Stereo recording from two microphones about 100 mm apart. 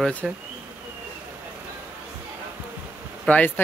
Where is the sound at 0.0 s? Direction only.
15° left (ahead or behind).